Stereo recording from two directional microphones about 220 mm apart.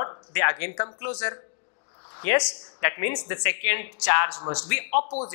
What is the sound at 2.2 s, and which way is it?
Speech, 15° left (ahead or behind).